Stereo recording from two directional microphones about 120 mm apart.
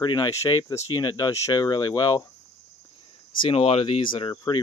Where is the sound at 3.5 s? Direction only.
55° left (ahead or behind); by 4.6 s 35° left (ahead or behind).